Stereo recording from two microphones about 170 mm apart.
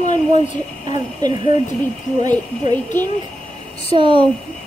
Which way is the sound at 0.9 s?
25° right (ahead or behind).